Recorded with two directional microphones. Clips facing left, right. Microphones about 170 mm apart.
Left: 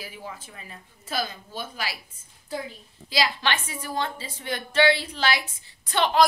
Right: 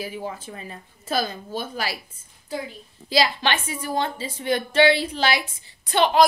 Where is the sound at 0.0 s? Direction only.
30° right (ahead or behind).